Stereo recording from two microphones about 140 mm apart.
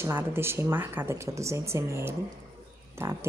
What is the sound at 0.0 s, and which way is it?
A woman's voice, 15° right (ahead or behind).